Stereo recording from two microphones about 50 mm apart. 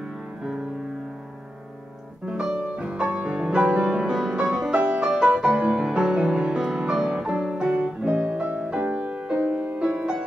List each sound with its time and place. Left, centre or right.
0.4 s music: centre
2.8 s music: right
3.8 s music: centre
8.5 s music: right